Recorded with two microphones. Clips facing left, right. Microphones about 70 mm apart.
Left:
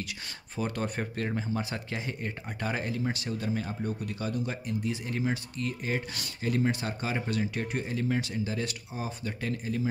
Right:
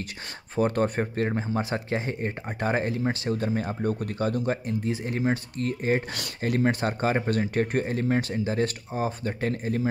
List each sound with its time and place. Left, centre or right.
0.6 s speech: right
6.1 s speech: right